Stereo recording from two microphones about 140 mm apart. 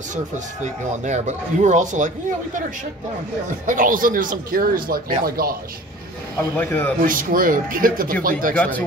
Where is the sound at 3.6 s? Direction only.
75° right (ahead or behind); by 5.6 s 90° right.